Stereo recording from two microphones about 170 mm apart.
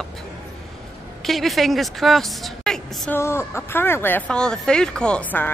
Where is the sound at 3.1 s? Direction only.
15° left (ahead or behind).